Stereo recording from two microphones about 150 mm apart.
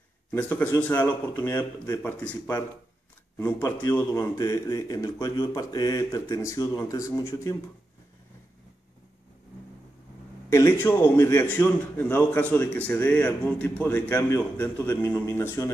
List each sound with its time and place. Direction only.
0.3 s speech: 15° left (ahead or behind)
10.5 s speech: 15° left (ahead or behind)